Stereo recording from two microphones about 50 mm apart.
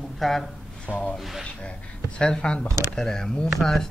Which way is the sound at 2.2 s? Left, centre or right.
Centre.